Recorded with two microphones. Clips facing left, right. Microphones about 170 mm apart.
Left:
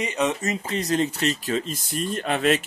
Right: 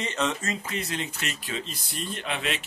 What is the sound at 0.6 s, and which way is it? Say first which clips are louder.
Speech: left 9 dB; 35° left (ahead or behind).